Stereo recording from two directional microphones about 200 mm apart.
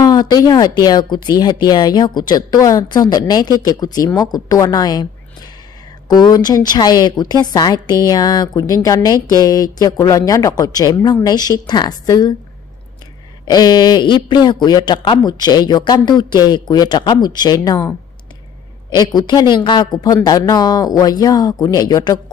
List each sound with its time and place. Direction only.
0.0 s a woman's voice: 20° left (ahead or behind)
6.0 s a woman's voice: 20° left (ahead or behind)
13.5 s a woman's voice: 20° left (ahead or behind)
18.9 s a woman's voice: 20° left (ahead or behind)